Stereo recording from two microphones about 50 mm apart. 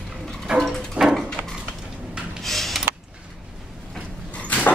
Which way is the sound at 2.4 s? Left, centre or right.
Centre.